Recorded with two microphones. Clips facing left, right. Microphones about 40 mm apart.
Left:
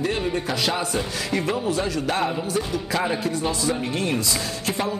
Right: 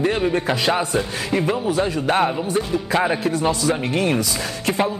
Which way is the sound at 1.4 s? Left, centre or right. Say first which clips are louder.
Right 4 dB; centre.